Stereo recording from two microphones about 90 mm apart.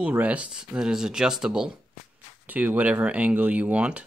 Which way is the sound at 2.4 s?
20° right (ahead or behind).